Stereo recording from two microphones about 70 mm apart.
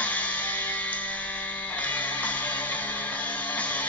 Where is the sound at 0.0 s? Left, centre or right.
Left.